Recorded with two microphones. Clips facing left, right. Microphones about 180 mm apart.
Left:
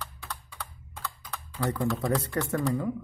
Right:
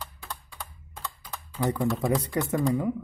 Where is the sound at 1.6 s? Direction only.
20° right (ahead or behind).